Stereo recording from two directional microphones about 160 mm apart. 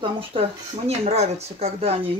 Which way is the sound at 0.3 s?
35° right (ahead or behind).